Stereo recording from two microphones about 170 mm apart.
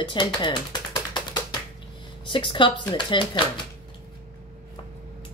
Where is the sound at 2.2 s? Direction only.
30° left (ahead or behind).